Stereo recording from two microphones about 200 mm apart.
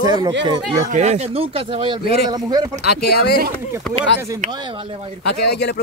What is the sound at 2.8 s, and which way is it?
Speech, 55° left (ahead or behind).